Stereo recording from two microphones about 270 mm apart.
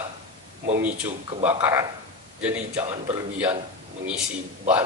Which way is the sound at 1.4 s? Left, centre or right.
Centre.